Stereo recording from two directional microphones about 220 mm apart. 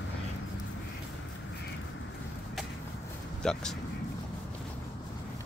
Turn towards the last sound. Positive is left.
turn(degrees=5)  # may be behind; listen again after turning